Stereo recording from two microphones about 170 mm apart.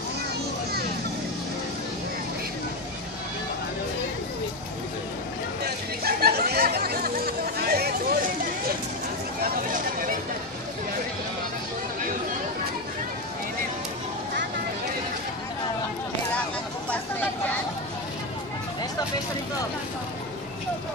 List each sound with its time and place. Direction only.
6.0 s chatter: 65° right (ahead or behind)